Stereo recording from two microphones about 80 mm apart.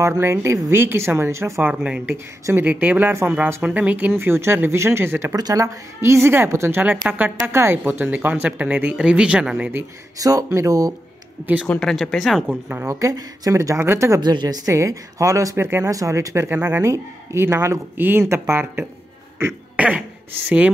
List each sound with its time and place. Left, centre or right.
0.0 s speech: right
1.7 s speech: centre; by 5.3 s right
5.3 s speech: right; by 9.7 s centre
10.1 s speech: right
11.8 s speech: centre
12.4 s speech: right
12.8 s speech: right
14.2 s a woman's voice: right
14.7 s speech: right
15.9 s speech: right
16.4 s speech: right
16.9 s speech: right
19.8 s a sound: centre
20.4 s speech: centre